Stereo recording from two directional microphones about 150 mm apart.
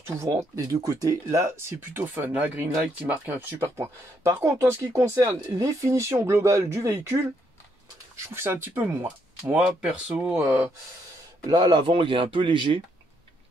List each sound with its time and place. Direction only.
0.0 s a man's voice: 20° right (ahead or behind)
8.3 s speech: 15° right (ahead or behind)
11.4 s a man's voice: 25° right (ahead or behind)
11.8 s speech: 35° right (ahead or behind)